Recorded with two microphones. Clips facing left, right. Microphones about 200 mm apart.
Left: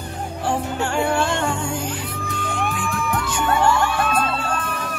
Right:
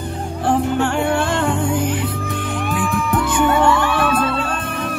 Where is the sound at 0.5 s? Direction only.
55° right (ahead or behind).